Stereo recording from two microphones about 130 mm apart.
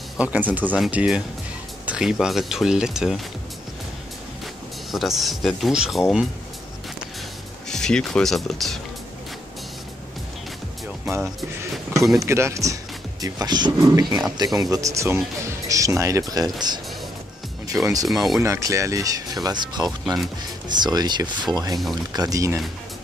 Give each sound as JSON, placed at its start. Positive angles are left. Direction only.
{"t": 0.2, "sound": "speech", "side_deg": -10}
{"t": 4.9, "sound": "speech", "side_deg": 0}
{"t": 7.7, "sound": "speech", "side_deg": 5}
{"t": 12.2, "sound": "speech", "side_deg": -20}
{"t": 17.8, "sound": "speech", "side_deg": -25}